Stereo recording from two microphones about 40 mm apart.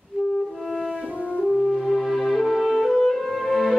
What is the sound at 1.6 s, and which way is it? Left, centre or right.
Music, centre.